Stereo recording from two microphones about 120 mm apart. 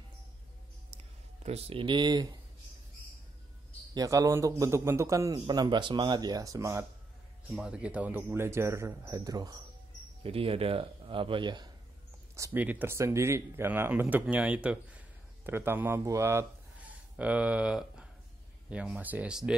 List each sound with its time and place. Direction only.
0.9 s a sound: 55° right (ahead or behind)
1.8 s speech: 40° right (ahead or behind)
3.9 s a man's voice: 30° right (ahead or behind)
7.5 s a man's voice: 10° right (ahead or behind); by 9.6 s 30° right (ahead or behind)
10.2 s a man's voice: 50° right (ahead or behind)
12.5 s a man's voice: 15° right (ahead or behind)